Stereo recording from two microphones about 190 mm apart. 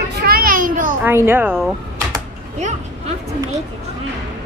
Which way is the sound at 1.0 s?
10° right (ahead or behind).